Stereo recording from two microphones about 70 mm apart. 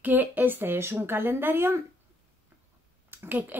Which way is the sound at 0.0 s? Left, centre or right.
Right.